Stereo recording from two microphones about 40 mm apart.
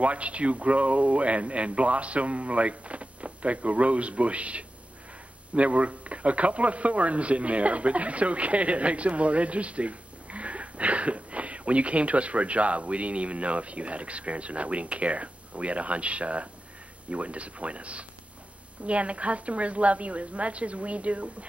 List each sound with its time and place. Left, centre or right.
0.0 s a man's voice: right